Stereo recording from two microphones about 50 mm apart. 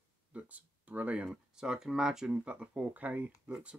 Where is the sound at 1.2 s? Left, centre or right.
Centre.